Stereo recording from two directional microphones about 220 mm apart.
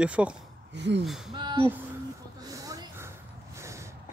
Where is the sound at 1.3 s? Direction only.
20° right (ahead or behind).